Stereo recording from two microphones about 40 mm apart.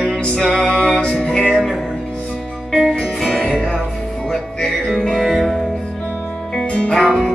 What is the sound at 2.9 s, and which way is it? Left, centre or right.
Music, centre.